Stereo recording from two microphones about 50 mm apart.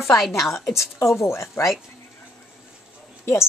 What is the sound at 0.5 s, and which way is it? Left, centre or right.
A woman's voice, left.